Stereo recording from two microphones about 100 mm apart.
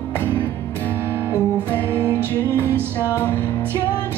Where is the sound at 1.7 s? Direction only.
15° left (ahead or behind).